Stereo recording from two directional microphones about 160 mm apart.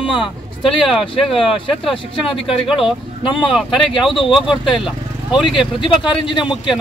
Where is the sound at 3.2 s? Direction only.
30° left (ahead or behind).